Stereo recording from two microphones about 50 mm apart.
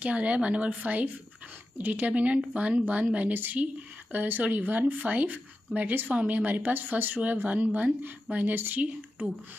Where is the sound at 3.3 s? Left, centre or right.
Right.